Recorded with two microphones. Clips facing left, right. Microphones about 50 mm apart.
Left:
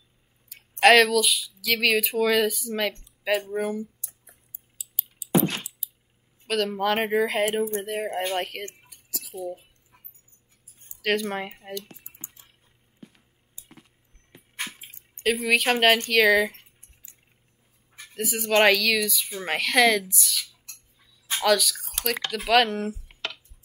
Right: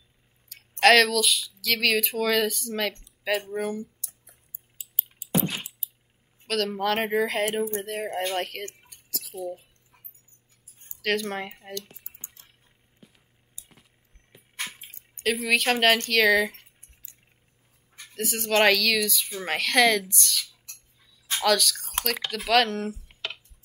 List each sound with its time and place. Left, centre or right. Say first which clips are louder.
0.5 s speech: left 1 dB; centre
4.7 s a sound: even; right
6.4 s speech: left 1 dB; centre
8.8 s cutlery: even; centre
11.0 s speech: left 2 dB; centre
12.3 s a sound: even; centre
13.6 s a sound: left 2 dB; left
14.3 s vehicle: left 3 dB; centre
14.7 s speech: left 1 dB; centre
17.9 s speech: left 1 dB; centre
21.0 s a sound: even; centre
22.0 s speech: left 3 dB; centre